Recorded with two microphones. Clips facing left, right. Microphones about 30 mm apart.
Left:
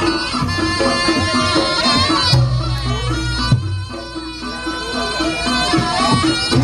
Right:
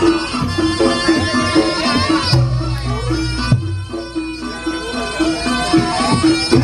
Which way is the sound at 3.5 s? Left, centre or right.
Left.